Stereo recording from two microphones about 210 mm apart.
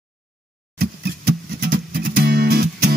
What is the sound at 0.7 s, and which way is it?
Music, 50° right (ahead or behind).